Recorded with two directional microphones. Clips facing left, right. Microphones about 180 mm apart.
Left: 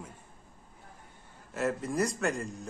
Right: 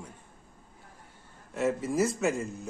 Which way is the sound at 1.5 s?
Centre (ahead or behind).